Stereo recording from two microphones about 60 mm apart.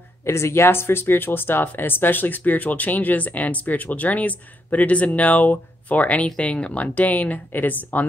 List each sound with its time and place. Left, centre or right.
0.2 s speech: left